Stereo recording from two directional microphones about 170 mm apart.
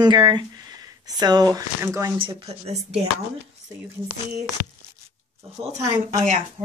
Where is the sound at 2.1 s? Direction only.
30° right (ahead or behind).